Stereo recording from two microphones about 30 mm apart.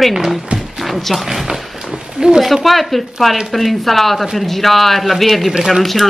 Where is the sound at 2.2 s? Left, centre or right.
Right.